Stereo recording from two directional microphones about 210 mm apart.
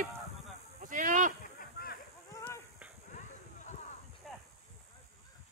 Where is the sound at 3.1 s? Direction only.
35° left (ahead or behind).